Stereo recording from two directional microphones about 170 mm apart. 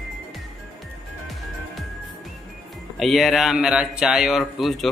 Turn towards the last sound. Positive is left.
turn(degrees=0)  # may be behind; listen again after turning